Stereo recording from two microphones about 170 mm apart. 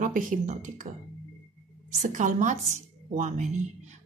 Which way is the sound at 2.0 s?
45° right (ahead or behind).